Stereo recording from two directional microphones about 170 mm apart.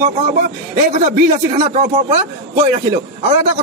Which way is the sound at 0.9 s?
45° right (ahead or behind).